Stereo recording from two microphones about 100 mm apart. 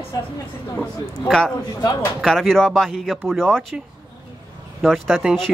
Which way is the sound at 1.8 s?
35° left (ahead or behind).